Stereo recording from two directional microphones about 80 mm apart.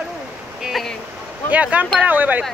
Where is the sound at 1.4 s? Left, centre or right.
Centre.